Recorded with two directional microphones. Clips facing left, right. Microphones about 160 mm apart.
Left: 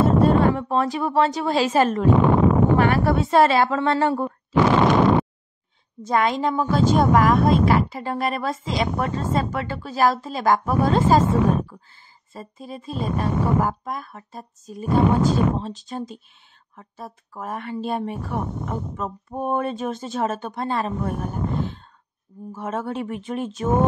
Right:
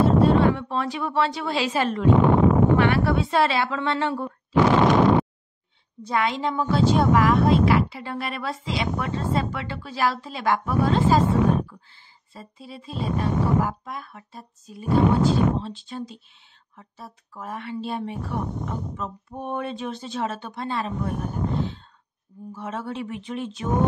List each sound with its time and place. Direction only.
0.0 s speech: 45° left (ahead or behind)
6.0 s speech: 45° left (ahead or behind)
21.5 s sigh: 50° left (ahead or behind)
22.5 s speech: 50° left (ahead or behind)